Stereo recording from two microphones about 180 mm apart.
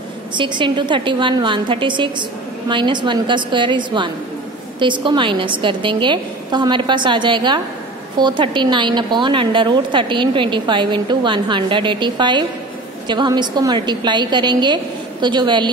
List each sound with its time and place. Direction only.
0.4 s a woman's voice: 25° right (ahead or behind)